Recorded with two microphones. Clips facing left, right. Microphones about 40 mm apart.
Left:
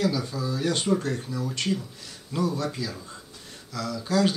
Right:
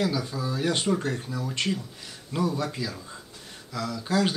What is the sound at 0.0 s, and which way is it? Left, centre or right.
A man's voice, centre.